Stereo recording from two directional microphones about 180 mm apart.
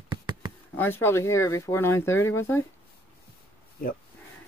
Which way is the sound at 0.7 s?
10° left (ahead or behind).